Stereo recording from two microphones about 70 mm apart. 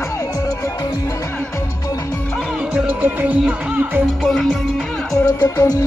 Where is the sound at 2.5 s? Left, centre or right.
Centre.